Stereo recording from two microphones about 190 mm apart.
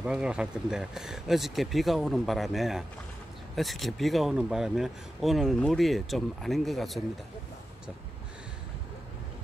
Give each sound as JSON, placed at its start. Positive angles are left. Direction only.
{"t": 0.0, "sound": "speech", "side_deg": -5}